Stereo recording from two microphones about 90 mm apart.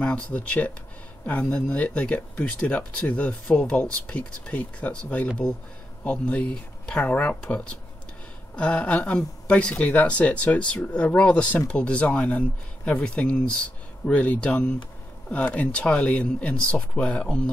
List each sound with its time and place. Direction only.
0.0 s speech: 15° left (ahead or behind)